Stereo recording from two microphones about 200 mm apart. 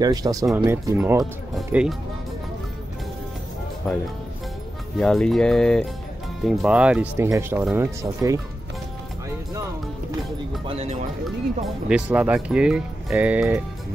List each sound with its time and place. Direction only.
0.0 s speech: 20° right (ahead or behind)
1.5 s speech: centre (ahead or behind)
4.9 s speech: 5° left (ahead or behind); by 8.4 s 15° right (ahead or behind)
10.7 s speech: 35° right (ahead or behind)
11.2 s speech: 5° right (ahead or behind)